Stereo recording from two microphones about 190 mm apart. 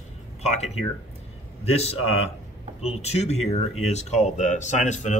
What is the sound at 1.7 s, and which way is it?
Speech, 35° left (ahead or behind).